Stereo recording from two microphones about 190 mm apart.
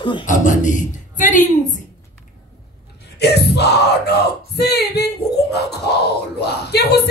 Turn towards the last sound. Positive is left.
turn(degrees=60)  # may be behind; listen again after turning